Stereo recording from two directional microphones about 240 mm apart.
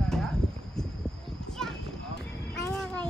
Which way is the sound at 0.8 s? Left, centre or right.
Centre.